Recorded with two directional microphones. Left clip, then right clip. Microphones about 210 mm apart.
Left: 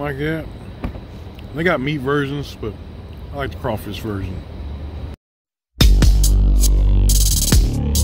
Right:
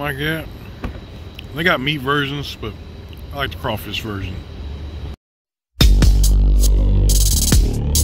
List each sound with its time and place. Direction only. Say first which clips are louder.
0.0 s speech: right 1 dB; centre (ahead or behind)
1.6 s speech: right 1 dB; centre (ahead or behind)
5.8 s music: even; centre (ahead or behind)